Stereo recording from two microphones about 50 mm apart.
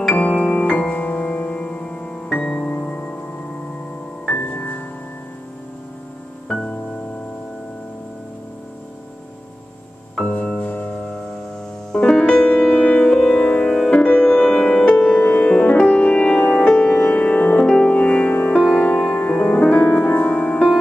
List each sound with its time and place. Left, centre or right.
0.1 s music: left
4.4 s music: left
10.1 s music: left
11.9 s piano: centre
13.0 s music: centre; by 14.4 s left
14.4 s music: centre